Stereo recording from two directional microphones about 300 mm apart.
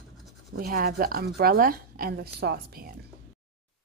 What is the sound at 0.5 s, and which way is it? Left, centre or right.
A woman's voice, right.